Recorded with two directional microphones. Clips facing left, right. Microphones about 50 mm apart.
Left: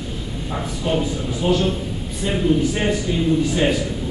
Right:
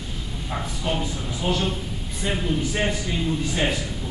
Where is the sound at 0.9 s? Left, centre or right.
Centre.